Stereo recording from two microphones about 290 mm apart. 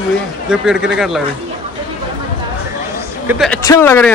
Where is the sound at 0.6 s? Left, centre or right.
Centre.